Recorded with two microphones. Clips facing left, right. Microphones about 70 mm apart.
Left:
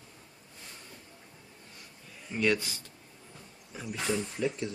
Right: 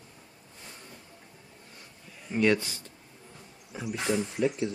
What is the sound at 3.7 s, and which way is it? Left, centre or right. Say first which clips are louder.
Speech: right 3 dB; centre.